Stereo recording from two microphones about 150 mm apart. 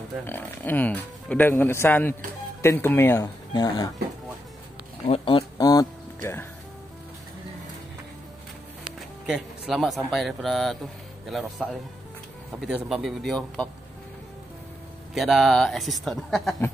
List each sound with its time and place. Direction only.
0.3 s speech: 10° left (ahead or behind)
3.5 s speech: 30° left (ahead or behind)
5.0 s speech: 35° left (ahead or behind)
9.2 s speech: 5° right (ahead or behind)
15.1 s speech: centre (ahead or behind)